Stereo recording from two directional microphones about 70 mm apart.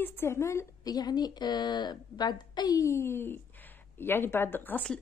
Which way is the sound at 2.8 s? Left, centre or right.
Left.